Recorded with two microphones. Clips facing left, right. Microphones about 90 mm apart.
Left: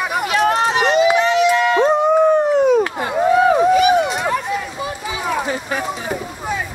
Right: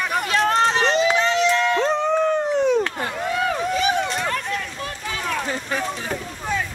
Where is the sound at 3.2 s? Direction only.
25° left (ahead or behind).